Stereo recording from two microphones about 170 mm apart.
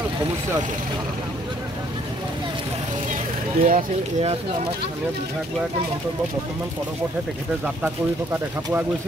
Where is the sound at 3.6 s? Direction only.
40° right (ahead or behind).